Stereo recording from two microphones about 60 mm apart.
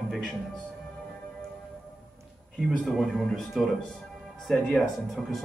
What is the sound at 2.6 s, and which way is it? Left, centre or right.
A man's voice, centre.